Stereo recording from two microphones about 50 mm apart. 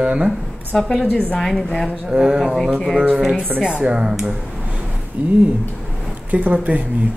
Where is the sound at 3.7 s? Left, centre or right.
Right.